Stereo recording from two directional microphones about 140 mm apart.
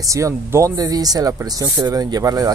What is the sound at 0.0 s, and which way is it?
Speech, 20° right (ahead or behind).